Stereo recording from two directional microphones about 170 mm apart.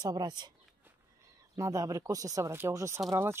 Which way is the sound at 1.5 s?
20° right (ahead or behind).